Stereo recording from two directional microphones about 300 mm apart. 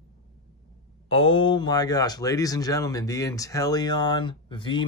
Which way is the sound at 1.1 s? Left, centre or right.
Centre.